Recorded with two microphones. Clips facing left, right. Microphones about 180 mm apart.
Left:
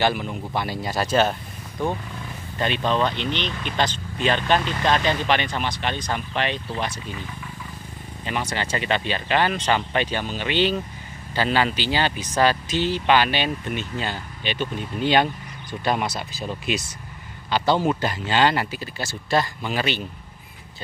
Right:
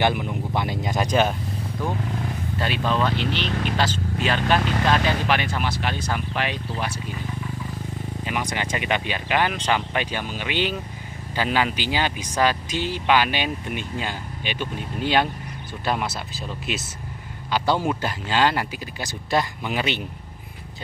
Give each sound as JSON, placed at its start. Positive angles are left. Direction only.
{"t": 0.0, "sound": "speech", "side_deg": -15}
{"t": 2.6, "sound": "speech", "side_deg": -5}
{"t": 3.4, "sound": "speech", "side_deg": -45}
{"t": 3.7, "sound": "speech", "side_deg": -5}
{"t": 8.2, "sound": "speech", "side_deg": -10}
{"t": 18.9, "sound": "speech", "side_deg": -15}